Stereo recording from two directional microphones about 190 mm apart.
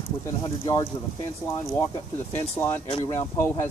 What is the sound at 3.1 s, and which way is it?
Speech, 10° left (ahead or behind).